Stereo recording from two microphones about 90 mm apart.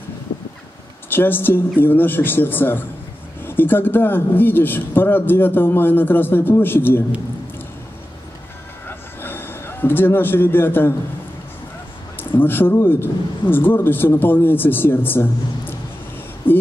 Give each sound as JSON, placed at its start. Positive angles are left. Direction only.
{"t": 1.1, "sound": "a man's voice", "side_deg": 25}
{"t": 8.8, "sound": "a sound", "side_deg": 25}
{"t": 12.2, "sound": "a man's voice", "side_deg": 25}
{"t": 16.5, "sound": "speech", "side_deg": 20}